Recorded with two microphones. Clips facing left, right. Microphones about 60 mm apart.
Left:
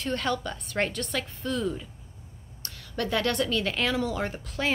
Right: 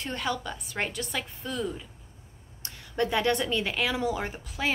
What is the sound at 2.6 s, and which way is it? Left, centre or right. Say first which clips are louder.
Speech: right 3 dB; right.